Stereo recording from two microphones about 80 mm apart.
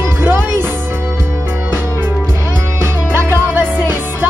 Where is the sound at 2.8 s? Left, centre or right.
Right.